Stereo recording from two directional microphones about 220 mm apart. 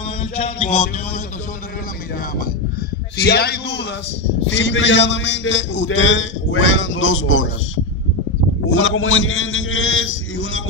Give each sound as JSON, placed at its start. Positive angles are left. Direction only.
{"t": 0.4, "sound": "music", "side_deg": 30}
{"t": 3.2, "sound": "a man's voice", "side_deg": 45}